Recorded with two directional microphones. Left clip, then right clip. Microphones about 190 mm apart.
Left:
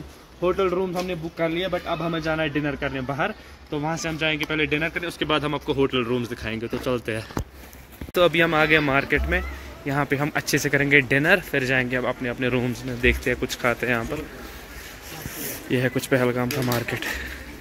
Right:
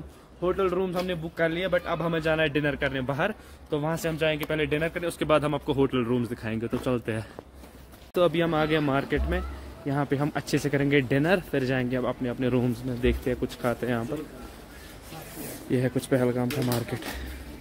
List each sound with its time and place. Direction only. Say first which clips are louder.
0.6 s speech: left 2 dB; 15° left (ahead or behind)
0.9 s speech: left 1 dB; 10° right (ahead or behind)
2.0 s a man's voice: even; 30° right (ahead or behind); by 7.2 s 50° right (ahead or behind)
8.1 s speech: left 5 dB; 10° right (ahead or behind)
15.7 s speech: left 4 dB; 10° right (ahead or behind)